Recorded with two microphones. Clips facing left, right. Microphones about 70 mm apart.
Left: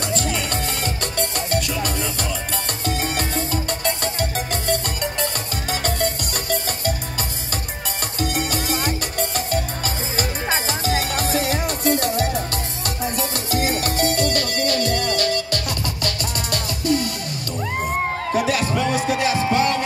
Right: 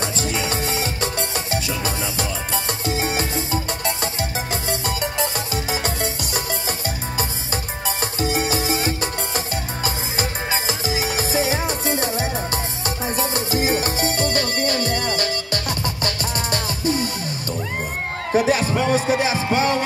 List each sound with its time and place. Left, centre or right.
0.1 s music: centre
2.8 s music: centre
8.2 s music: centre
18.3 s music: right